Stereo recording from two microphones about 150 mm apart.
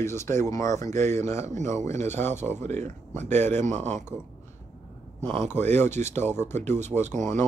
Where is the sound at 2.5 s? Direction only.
50° right (ahead or behind).